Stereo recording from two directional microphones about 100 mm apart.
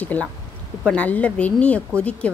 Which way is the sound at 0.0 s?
15° left (ahead or behind).